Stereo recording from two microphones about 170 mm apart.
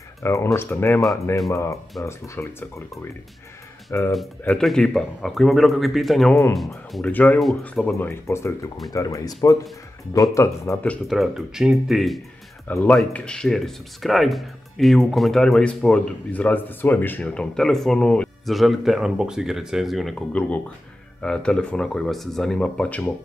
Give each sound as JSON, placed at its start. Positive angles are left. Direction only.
{"t": 0.2, "sound": "speech", "side_deg": 15}
{"t": 4.1, "sound": "speech", "side_deg": 0}
{"t": 10.3, "sound": "speech", "side_deg": 15}